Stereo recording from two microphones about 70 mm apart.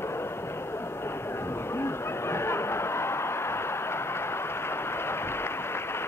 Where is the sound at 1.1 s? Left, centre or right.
Left.